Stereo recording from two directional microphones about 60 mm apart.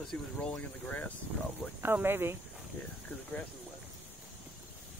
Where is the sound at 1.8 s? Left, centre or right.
Right.